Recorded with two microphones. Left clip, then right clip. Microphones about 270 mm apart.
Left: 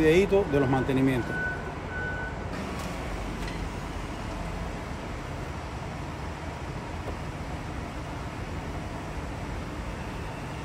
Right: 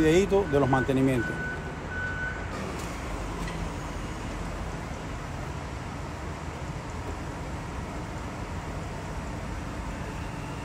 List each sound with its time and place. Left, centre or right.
0.0 s speech: centre